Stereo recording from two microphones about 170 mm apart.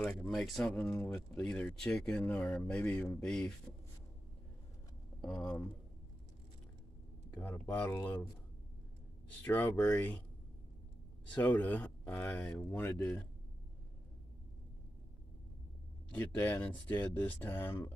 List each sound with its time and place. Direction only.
0.0 s speech: 5° left (ahead or behind)
5.2 s speech: 5° left (ahead or behind)
7.3 s speech: 10° left (ahead or behind)
9.4 s speech: 10° left (ahead or behind)
11.3 s speech: 10° left (ahead or behind)
16.1 s speech: 10° left (ahead or behind)